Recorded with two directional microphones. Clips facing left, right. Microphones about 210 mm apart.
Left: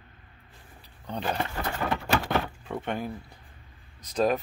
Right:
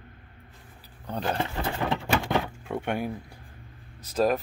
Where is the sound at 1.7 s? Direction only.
15° right (ahead or behind).